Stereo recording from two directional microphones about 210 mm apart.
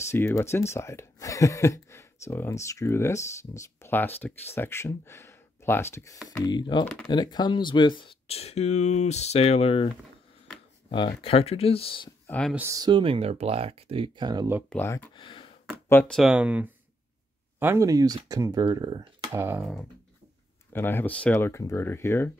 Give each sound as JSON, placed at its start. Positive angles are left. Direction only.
{"t": 0.1, "sound": "speech", "side_deg": 10}
{"t": 10.9, "sound": "speech", "side_deg": 25}
{"t": 12.3, "sound": "speech", "side_deg": 5}
{"t": 12.5, "sound": "speech", "side_deg": -15}
{"t": 14.7, "sound": "speech", "side_deg": 10}
{"t": 15.1, "sound": "a sound", "side_deg": 25}
{"t": 15.9, "sound": "speech", "side_deg": 5}
{"t": 20.7, "sound": "speech", "side_deg": 10}